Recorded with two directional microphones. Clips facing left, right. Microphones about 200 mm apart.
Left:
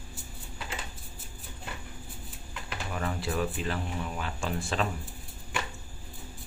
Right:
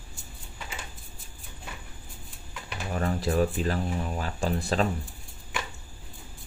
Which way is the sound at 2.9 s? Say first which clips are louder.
Right 6 dB; 40° right (ahead or behind).